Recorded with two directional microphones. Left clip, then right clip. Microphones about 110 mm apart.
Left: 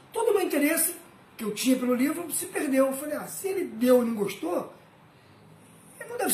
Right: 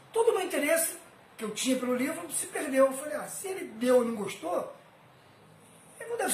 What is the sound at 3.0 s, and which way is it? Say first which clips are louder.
A man's voice: left 3 dB; centre (ahead or behind).